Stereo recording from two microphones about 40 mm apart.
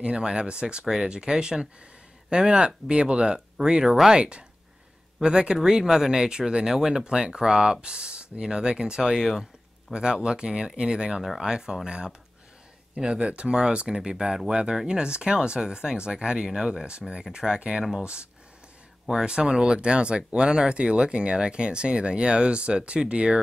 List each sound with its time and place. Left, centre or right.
0.0 s speech: right
3.9 s speech: centre
4.2 s speech: right
9.1 s speech: centre
16.8 s speech: right
19.2 s speech: centre